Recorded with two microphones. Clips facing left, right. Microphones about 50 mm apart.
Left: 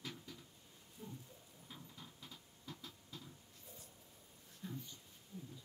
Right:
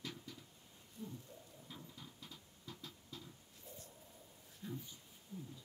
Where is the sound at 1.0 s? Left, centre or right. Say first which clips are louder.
Right 3 dB; centre.